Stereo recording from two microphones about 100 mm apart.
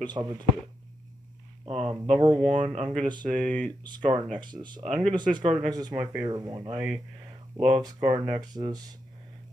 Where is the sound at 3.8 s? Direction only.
50° right (ahead or behind).